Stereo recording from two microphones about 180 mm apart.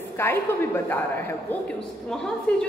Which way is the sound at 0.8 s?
10° left (ahead or behind).